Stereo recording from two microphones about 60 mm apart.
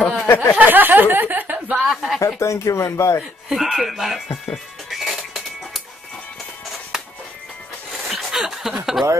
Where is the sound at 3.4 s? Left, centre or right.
Centre.